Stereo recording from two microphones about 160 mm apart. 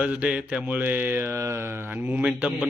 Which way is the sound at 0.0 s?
5° right (ahead or behind).